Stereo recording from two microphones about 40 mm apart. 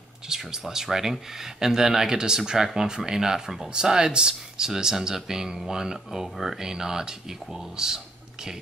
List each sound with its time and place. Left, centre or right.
0.3 s speech: centre